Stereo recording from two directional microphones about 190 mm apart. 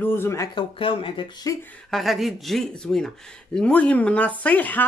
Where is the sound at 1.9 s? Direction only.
Centre (ahead or behind).